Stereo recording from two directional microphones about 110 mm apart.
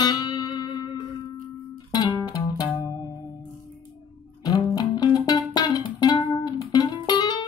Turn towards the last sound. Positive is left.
turn(degrees=40)  # may be behind; listen again after turning